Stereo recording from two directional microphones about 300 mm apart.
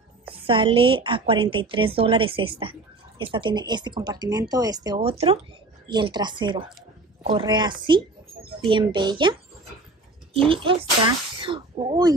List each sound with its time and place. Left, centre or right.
0.2 s speech: centre
10.4 s speech: centre